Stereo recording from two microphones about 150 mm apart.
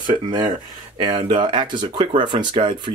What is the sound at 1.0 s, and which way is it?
Speech, 30° right (ahead or behind).